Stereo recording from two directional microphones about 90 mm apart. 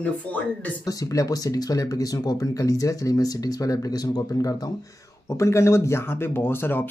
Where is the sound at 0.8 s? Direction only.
40° left (ahead or behind).